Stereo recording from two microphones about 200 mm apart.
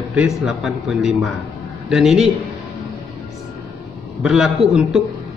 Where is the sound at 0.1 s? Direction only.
5° right (ahead or behind).